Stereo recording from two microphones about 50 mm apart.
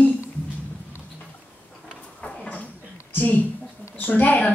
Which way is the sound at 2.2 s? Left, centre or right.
Left.